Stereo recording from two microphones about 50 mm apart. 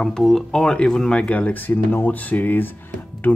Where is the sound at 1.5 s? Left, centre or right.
Left.